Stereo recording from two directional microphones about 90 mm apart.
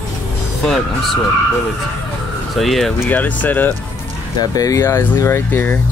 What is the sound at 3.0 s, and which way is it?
Speech, 20° left (ahead or behind).